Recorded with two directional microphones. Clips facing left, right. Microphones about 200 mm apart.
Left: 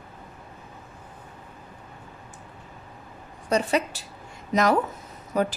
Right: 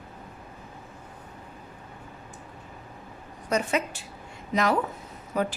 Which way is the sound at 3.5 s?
35° left (ahead or behind).